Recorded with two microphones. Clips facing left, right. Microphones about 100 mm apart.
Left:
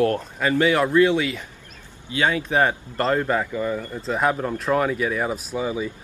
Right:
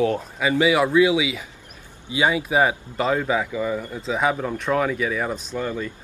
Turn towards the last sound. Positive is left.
turn(degrees=5)  # may be behind; listen again after turning